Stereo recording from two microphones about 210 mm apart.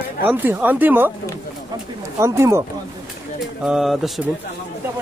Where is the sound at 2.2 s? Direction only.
15° right (ahead or behind).